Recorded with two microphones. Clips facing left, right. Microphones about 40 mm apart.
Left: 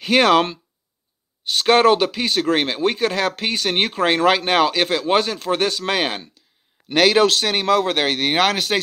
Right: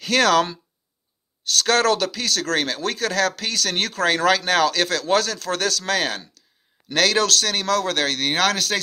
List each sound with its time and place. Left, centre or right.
0.0 s speech: left